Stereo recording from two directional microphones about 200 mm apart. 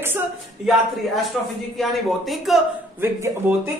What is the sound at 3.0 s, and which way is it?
Speech, 15° right (ahead or behind).